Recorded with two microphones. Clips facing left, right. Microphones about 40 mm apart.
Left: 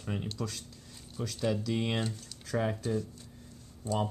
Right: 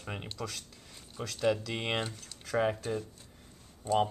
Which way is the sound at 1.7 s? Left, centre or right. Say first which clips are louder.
Left 1 dB; right.